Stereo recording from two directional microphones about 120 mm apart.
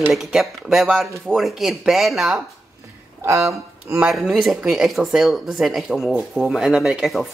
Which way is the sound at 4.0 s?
5° right (ahead or behind).